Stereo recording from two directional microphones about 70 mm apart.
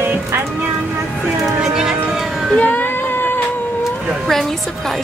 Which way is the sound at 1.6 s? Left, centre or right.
Centre.